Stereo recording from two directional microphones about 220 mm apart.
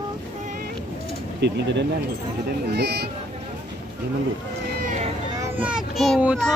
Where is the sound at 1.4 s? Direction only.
50° right (ahead or behind).